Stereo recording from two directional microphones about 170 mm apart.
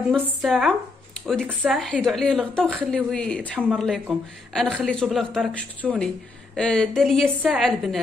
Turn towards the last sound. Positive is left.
turn(degrees=0)  # may be behind; listen again after turning